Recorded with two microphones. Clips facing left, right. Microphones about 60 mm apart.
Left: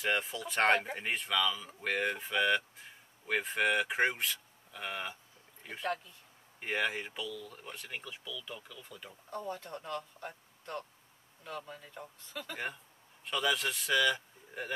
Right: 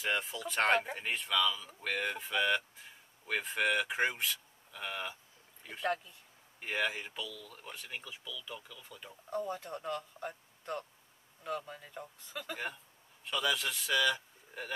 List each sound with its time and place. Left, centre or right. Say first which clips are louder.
0.0 s speech: left 2 dB; centre
6.9 s speech: left 2 dB; centre
9.3 s speech: right 3 dB; centre